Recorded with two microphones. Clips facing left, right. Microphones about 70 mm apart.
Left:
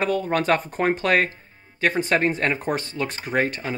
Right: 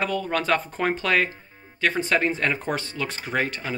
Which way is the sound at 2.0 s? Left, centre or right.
Left.